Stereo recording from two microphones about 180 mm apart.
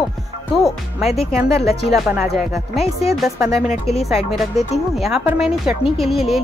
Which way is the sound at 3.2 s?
Centre (ahead or behind).